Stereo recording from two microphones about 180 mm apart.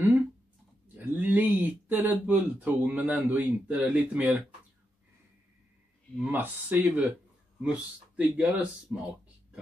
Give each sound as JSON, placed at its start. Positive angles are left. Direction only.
{"t": 0.9, "sound": "speech", "side_deg": -10}
{"t": 6.1, "sound": "speech", "side_deg": -10}